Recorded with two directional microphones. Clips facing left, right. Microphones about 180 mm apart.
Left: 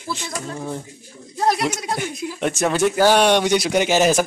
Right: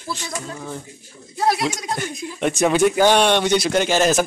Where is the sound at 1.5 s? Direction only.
5° left (ahead or behind).